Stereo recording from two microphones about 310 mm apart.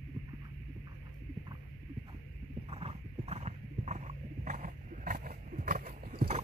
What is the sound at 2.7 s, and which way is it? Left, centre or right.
Horse, centre.